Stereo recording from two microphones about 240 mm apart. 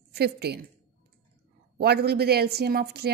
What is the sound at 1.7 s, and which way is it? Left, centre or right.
Speech, right.